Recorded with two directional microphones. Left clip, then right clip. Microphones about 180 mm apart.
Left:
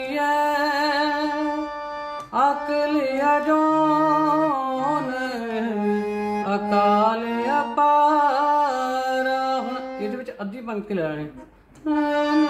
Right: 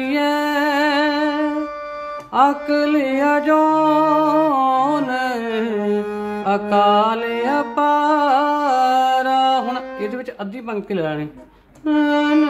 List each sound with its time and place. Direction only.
0.1 s music: 40° right (ahead or behind)
10.7 s speech: 35° right (ahead or behind)